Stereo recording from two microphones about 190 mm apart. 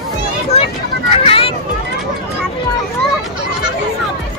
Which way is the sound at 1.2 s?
30° left (ahead or behind).